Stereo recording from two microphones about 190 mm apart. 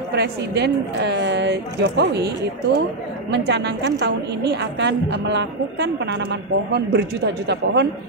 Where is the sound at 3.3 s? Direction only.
65° right (ahead or behind).